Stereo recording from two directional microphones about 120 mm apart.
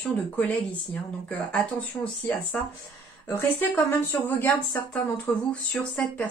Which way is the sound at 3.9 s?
15° left (ahead or behind).